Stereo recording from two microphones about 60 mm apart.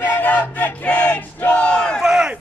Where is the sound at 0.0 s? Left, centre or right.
Left.